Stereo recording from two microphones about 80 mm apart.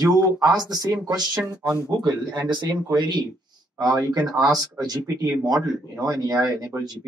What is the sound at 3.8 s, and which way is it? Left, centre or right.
Speech, right.